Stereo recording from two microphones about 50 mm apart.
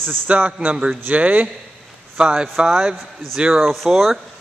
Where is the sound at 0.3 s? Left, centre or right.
Right.